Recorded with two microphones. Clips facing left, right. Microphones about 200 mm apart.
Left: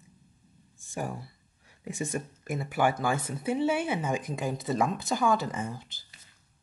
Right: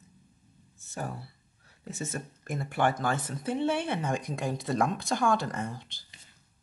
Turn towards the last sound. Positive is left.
turn(degrees=5)  # may be behind; listen again after turning